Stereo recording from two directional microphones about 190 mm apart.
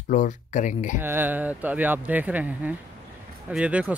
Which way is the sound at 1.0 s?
10° right (ahead or behind).